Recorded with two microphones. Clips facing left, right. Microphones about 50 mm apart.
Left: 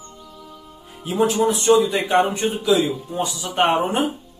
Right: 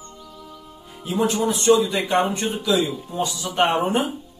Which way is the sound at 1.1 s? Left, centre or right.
Centre.